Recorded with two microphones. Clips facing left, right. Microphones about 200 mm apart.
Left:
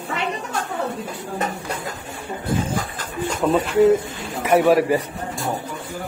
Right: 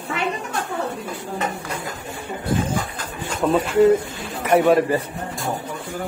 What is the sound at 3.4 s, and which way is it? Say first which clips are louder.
A man's voice: even; centre (ahead or behind).